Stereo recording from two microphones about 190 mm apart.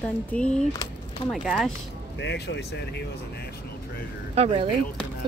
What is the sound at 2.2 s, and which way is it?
Speech, 70° left (ahead or behind).